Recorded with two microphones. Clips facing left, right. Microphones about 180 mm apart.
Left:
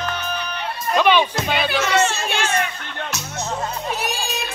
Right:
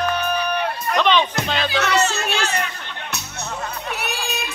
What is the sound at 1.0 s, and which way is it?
Music, 10° left (ahead or behind).